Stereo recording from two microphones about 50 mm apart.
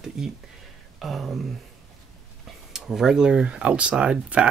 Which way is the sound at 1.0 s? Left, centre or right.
Centre.